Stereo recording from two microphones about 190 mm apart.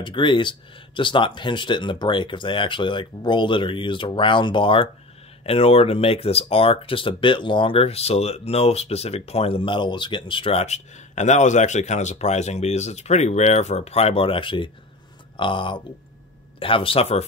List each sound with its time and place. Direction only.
0.0 s speech: 25° left (ahead or behind)